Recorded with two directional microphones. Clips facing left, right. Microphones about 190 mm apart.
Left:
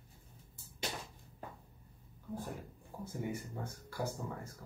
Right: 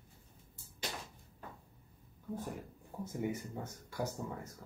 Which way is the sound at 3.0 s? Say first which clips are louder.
Right 2 dB; 20° right (ahead or behind).